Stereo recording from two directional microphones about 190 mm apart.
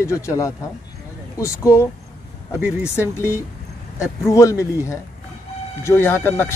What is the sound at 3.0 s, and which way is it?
Speech, 15° left (ahead or behind).